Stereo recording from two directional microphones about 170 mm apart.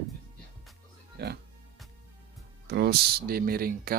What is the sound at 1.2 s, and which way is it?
Speech, 75° right (ahead or behind).